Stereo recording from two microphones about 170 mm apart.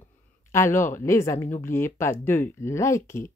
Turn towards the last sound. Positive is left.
turn(degrees=15)  # may be behind; listen again after turning